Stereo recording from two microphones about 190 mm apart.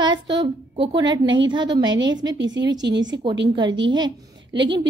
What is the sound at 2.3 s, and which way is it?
Speech, 70° right (ahead or behind).